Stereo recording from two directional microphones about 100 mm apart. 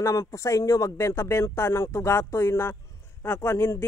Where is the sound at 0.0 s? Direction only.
35° left (ahead or behind).